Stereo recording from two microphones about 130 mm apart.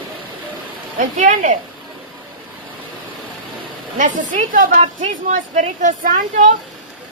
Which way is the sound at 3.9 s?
85° right.